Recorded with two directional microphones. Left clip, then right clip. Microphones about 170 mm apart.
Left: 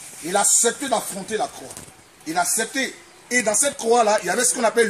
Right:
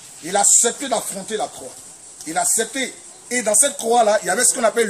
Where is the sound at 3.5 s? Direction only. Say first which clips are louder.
Right 3 dB; 30° right (ahead or behind).